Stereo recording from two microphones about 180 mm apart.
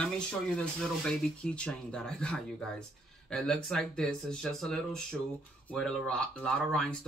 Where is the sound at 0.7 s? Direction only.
5° left (ahead or behind).